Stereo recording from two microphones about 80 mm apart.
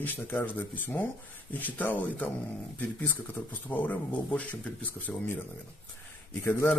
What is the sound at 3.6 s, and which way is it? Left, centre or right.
A man's voice, centre.